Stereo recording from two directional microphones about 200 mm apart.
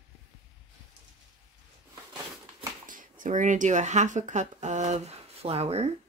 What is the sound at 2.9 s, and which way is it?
Speech, 40° right (ahead or behind).